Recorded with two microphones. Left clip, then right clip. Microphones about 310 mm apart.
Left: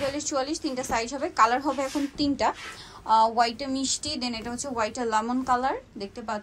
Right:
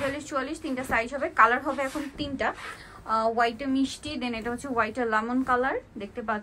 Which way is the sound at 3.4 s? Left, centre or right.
Left.